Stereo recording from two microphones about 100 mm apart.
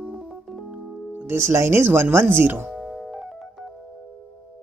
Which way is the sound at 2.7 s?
Centre (ahead or behind).